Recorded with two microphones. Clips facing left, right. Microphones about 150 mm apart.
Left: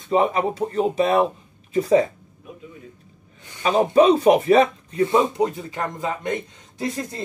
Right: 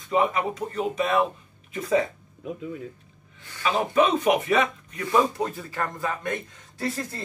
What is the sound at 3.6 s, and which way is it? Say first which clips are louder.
Speech: left 6 dB; 40° left (ahead or behind).